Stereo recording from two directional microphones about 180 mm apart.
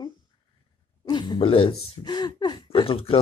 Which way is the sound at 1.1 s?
25° left (ahead or behind).